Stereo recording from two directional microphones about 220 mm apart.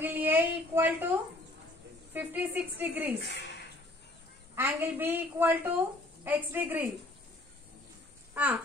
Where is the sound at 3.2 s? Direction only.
50° left (ahead or behind).